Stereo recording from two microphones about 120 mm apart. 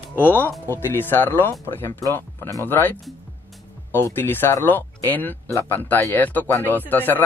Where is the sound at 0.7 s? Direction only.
20° left (ahead or behind).